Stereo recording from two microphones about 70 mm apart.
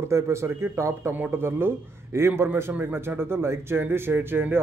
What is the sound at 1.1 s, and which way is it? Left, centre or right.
A man's voice, right.